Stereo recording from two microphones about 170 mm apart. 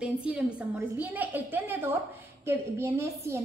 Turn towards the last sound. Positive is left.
turn(degrees=-15)  # may be behind; listen again after turning